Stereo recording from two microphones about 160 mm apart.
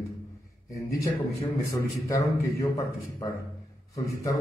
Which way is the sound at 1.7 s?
20° left (ahead or behind).